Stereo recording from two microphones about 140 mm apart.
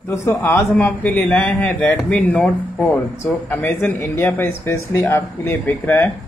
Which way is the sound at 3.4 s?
15° left (ahead or behind).